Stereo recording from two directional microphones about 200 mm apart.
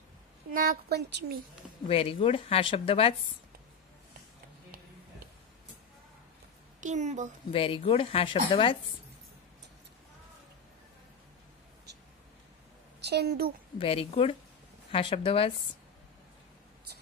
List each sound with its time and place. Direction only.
0.5 s a woman's voice: 50° right (ahead or behind)
1.9 s a woman's voice: 25° left (ahead or behind)
6.8 s a woman's voice: 35° right (ahead or behind)
7.5 s a woman's voice: 25° left (ahead or behind)
13.0 s a woman's voice: 55° right (ahead or behind)
13.7 s a woman's voice: 30° left (ahead or behind)